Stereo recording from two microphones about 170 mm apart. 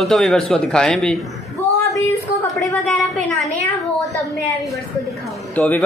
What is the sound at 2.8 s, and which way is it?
Speech, centre (ahead or behind).